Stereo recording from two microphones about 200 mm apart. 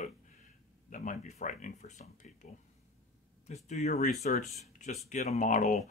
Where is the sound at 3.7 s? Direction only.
35° left (ahead or behind).